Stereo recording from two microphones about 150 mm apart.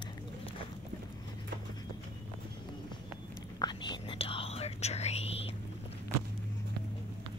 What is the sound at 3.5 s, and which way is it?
Whispering, 30° left (ahead or behind).